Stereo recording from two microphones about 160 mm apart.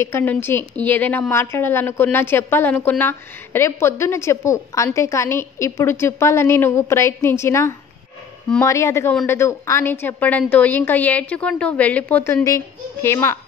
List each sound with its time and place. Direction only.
0.0 s a woman's voice: 15° left (ahead or behind)